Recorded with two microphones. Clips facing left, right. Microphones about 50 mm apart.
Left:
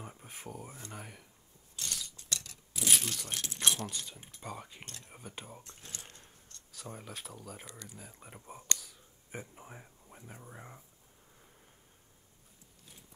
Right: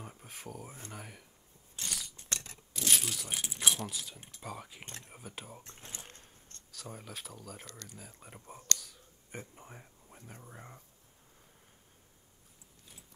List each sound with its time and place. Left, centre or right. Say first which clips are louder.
0.0 s speech: even; centre
1.9 s scissors: right 1 dB; centre
2.1 s a sound: left 1 dB; right
2.7 s speech: even; centre
5.6 s speech: right 1 dB; right
6.7 s speech: even; centre
8.7 s whispering: right 1 dB; centre